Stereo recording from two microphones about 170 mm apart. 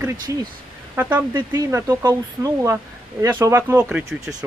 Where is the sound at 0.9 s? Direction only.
10° right (ahead or behind).